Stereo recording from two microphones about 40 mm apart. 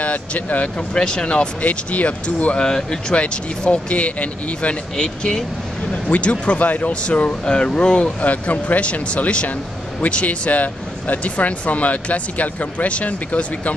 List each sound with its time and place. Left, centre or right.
0.0 s speech: left
1.6 s speech: left
2.6 s speech: centre
8.2 s speech: left